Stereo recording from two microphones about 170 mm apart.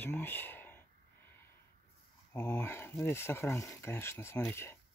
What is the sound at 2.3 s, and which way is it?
Speech, 10° left (ahead or behind).